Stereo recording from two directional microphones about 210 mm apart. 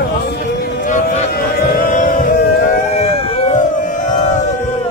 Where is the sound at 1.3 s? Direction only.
40° left (ahead or behind).